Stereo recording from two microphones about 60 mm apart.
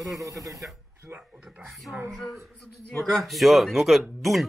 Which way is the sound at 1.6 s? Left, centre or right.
Centre.